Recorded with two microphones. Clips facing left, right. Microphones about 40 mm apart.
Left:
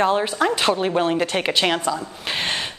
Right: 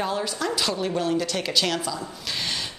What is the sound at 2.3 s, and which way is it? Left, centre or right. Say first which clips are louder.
Speech: left 6 dB; left.